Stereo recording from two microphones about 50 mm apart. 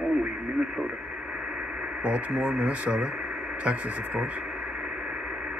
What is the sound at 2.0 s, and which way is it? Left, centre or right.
Speech, right.